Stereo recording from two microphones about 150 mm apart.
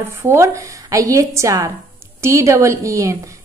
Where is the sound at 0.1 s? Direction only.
15° right (ahead or behind).